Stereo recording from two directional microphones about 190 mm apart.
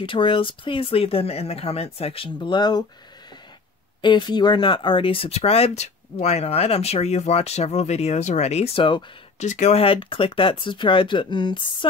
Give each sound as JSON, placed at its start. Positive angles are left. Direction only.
{"t": 0.0, "sound": "speech", "side_deg": 25}
{"t": 4.0, "sound": "speech", "side_deg": 25}